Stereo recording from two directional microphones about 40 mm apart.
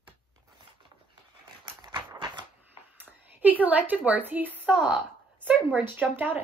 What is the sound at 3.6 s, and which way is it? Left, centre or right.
A woman's voice, right.